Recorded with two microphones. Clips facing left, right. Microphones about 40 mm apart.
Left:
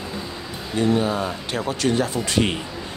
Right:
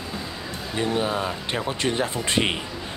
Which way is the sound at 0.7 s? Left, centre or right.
Centre.